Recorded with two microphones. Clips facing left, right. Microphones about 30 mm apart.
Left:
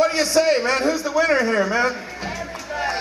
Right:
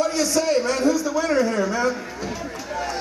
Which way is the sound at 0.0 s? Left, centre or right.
Left.